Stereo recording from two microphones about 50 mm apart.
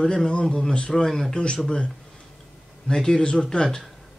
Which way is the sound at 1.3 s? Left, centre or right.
Centre.